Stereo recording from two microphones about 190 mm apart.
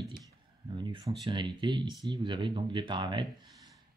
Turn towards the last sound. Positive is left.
turn(degrees=-20)  # may be behind; listen again after turning